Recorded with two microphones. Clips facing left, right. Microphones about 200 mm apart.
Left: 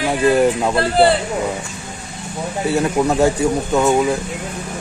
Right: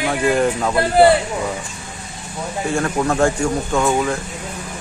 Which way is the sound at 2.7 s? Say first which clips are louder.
Left 2 dB; 15° left (ahead or behind).